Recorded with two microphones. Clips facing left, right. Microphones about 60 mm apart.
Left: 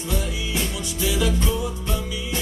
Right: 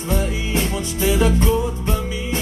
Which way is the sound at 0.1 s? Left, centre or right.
Right.